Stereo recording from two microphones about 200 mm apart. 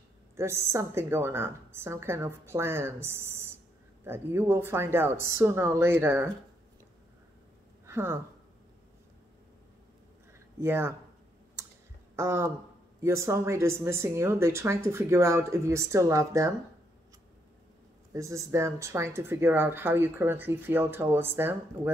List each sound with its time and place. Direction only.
0.4 s speech: 15° right (ahead or behind)
7.8 s speech: 10° right (ahead or behind)
10.6 s speech: 10° right (ahead or behind)
12.2 s speech: 15° right (ahead or behind)
18.1 s speech: 15° right (ahead or behind)